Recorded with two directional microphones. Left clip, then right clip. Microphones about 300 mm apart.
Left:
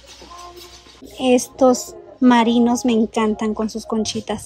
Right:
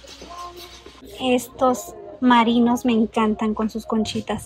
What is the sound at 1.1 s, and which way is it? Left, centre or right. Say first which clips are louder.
A woman's voice: left 5 dB; centre.